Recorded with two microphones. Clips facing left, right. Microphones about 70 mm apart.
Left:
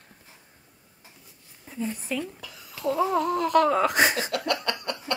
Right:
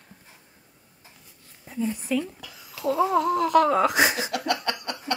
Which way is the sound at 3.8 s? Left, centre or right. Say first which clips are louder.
Right 1 dB; left.